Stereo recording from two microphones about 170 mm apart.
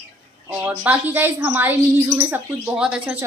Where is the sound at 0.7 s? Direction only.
10° right (ahead or behind).